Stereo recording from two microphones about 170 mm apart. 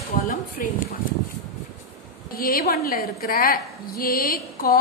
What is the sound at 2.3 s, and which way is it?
A woman's voice, 60° left (ahead or behind).